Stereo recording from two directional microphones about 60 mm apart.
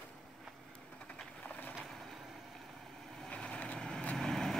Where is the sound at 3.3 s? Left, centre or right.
Centre.